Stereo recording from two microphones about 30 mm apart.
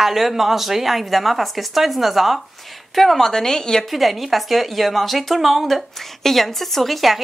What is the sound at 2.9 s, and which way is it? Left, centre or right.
Speech, centre.